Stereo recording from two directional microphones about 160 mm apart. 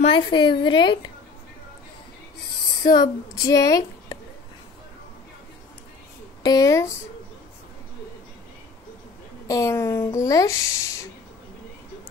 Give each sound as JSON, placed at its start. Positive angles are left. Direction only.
{"t": 0.0, "sound": "speech", "side_deg": 30}
{"t": 2.8, "sound": "a woman's voice", "side_deg": 25}
{"t": 6.4, "sound": "speech", "side_deg": 20}
{"t": 9.5, "sound": "speech", "side_deg": 20}